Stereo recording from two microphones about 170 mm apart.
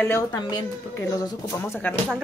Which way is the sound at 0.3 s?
25° left (ahead or behind).